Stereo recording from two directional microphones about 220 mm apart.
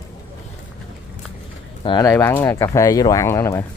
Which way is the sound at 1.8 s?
20° left (ahead or behind).